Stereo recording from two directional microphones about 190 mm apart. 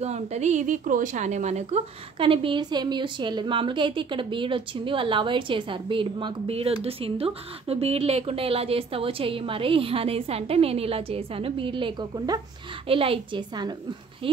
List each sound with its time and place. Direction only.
0.0 s speech: 35° right (ahead or behind)